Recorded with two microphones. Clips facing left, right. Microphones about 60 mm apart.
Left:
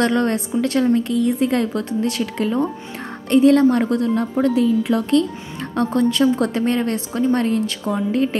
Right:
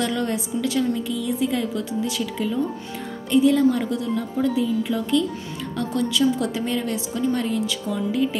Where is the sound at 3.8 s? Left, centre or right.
Left.